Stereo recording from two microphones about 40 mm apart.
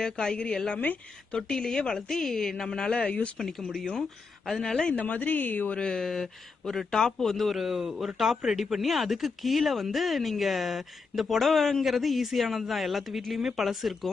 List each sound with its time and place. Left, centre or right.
0.0 s a man's voice: centre
2.9 s speech: left
3.3 s speech: centre
4.5 s a man's voice: centre
4.9 s speech: left
5.8 s a man's voice: left; by 14.1 s centre